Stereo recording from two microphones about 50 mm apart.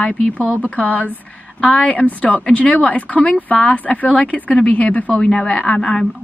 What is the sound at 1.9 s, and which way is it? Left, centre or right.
Speech, left.